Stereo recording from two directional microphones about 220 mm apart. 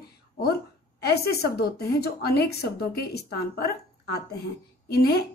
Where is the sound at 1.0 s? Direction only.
45° left (ahead or behind).